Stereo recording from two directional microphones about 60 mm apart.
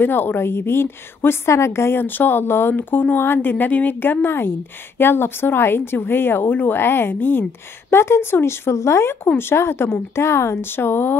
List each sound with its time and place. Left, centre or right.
0.0 s a woman's voice: left